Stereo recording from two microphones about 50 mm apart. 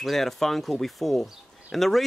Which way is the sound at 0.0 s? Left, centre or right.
Centre.